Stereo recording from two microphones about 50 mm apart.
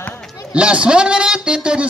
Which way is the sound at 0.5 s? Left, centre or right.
Right.